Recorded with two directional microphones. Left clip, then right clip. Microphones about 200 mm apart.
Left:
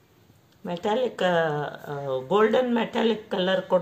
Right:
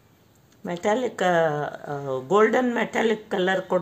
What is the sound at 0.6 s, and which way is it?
Speech, 30° right (ahead or behind).